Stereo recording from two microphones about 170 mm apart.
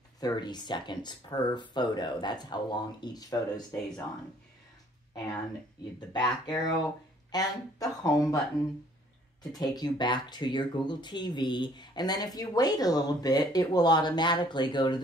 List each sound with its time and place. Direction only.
0.2 s speech: 25° left (ahead or behind)
5.1 s speech: 25° left (ahead or behind)
9.5 s speech: 20° left (ahead or behind)